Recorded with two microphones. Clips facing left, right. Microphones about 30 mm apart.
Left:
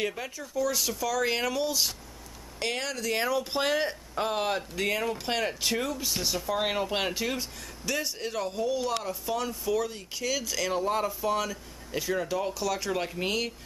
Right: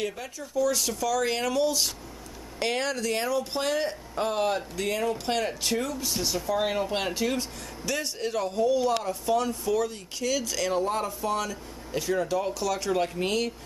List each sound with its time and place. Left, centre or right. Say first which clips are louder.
0.4 s speech: right 3 dB; centre